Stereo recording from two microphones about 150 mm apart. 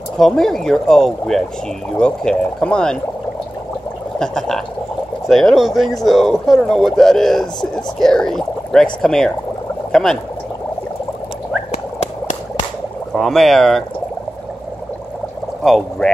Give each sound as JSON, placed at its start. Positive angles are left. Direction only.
{"t": 0.2, "sound": "speech", "side_deg": 5}
{"t": 4.2, "sound": "speech", "side_deg": 5}
{"t": 11.7, "sound": "a sound", "side_deg": 50}
{"t": 13.1, "sound": "speech", "side_deg": 0}
{"t": 15.6, "sound": "speech", "side_deg": 0}